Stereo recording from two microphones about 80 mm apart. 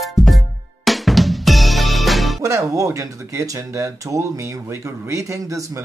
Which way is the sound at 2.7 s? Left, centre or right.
Right.